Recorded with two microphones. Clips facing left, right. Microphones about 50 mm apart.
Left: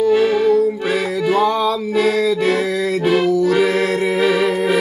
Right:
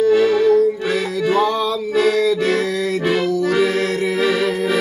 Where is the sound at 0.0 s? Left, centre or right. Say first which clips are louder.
Even; centre.